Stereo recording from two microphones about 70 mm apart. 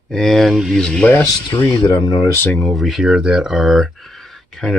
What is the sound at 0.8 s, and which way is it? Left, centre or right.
Speech, centre.